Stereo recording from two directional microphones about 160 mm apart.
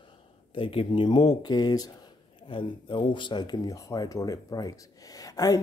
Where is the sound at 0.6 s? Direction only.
35° left (ahead or behind).